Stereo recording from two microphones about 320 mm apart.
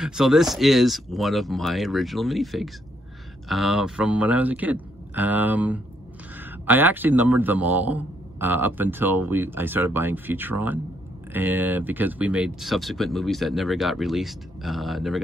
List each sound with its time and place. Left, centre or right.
0.0 s a man's voice: centre